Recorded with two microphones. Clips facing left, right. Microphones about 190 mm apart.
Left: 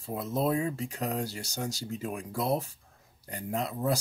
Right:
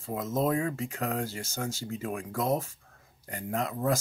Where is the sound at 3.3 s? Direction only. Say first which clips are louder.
Right 1 dB; 20° left (ahead or behind).